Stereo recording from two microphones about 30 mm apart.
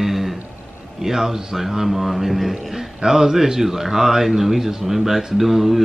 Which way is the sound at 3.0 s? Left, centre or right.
Right.